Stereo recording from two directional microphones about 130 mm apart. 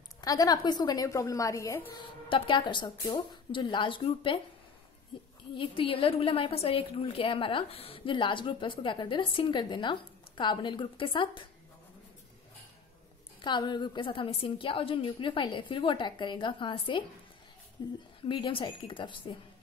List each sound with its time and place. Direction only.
0.2 s a woman's voice: 30° left (ahead or behind)
2.0 s a woman's voice: 40° left (ahead or behind)
5.6 s a woman's voice: 45° left (ahead or behind)
13.4 s a woman's voice: 35° left (ahead or behind)
18.2 s a woman's voice: 45° left (ahead or behind)